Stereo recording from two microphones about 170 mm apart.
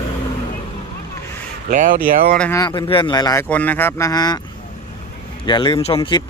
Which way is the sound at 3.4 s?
10° left (ahead or behind).